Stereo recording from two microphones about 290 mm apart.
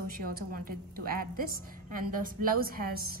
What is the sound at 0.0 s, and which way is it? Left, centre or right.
A woman's voice, right.